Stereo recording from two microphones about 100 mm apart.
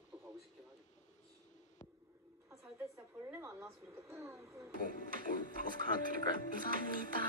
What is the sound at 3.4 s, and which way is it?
Speech, 30° right (ahead or behind).